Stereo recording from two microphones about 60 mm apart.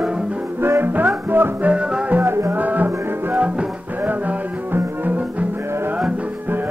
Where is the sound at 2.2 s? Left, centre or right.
Right.